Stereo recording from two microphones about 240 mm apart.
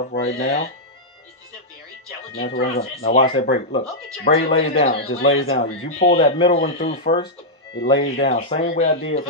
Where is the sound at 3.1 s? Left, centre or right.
Left.